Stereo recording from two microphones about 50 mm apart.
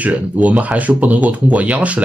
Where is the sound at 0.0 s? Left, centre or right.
Right.